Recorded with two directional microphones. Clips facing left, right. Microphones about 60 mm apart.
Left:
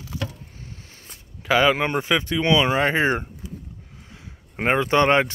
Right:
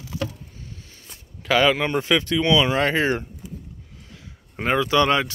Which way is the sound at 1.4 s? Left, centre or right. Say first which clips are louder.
Even; centre.